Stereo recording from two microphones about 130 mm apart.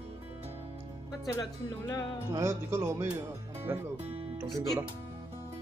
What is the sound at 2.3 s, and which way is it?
Speech, 20° right (ahead or behind).